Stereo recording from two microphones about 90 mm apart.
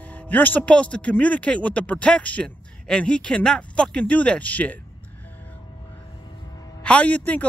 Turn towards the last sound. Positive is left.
turn(degrees=15)  # may be behind; listen again after turning